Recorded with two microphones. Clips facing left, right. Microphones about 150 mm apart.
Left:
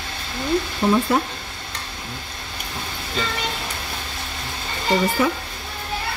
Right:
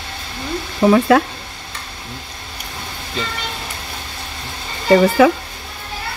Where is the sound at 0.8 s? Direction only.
90° right.